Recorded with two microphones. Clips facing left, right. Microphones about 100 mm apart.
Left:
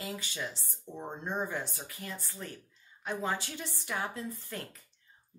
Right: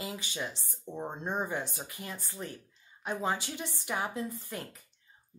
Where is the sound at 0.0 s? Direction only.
20° right (ahead or behind).